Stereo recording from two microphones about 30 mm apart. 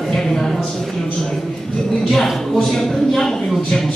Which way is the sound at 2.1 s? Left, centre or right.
Centre.